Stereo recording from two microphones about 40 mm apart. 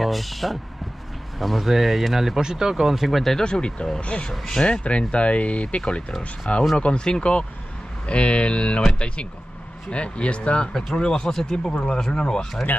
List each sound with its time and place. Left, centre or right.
0.0 s speech: centre
3.4 s speech: left
4.0 s speech: left
4.3 s speech: centre
4.8 s speech: left
10.7 s speech: centre